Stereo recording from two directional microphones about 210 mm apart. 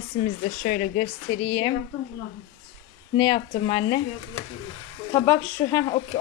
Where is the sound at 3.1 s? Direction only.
25° left (ahead or behind).